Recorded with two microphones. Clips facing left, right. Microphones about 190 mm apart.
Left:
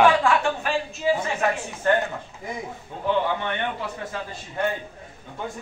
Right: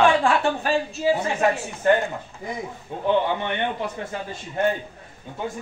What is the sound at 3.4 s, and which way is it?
Speech, 20° right (ahead or behind).